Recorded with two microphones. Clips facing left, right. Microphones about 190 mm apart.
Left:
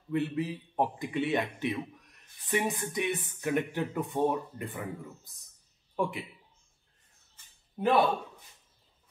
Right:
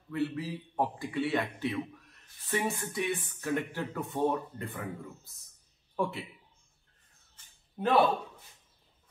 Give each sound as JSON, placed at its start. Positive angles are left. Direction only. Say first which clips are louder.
{"t": 0.1, "sound": "a man's voice", "louder": "left 2 dB", "side_deg": 20}
{"t": 5.9, "sound": "speech", "louder": "left 1 dB", "side_deg": 15}
{"t": 7.8, "sound": "a man's voice", "louder": "left 3 dB", "side_deg": 0}